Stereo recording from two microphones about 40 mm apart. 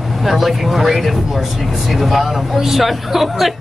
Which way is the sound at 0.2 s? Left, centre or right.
Centre.